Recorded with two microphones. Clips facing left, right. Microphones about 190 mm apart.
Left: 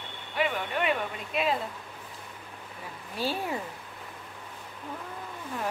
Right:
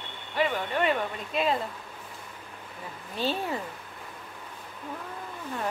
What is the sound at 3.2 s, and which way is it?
Speech, 10° left (ahead or behind).